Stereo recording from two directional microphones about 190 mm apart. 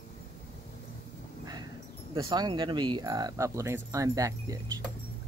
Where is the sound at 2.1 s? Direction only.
20° right (ahead or behind).